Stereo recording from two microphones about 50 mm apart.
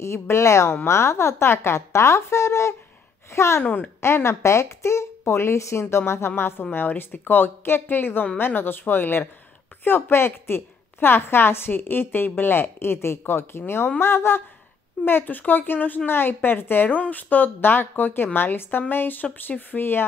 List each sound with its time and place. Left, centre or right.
0.0 s a woman's voice: left
7.0 s a woman's voice: left
15.0 s a woman's voice: left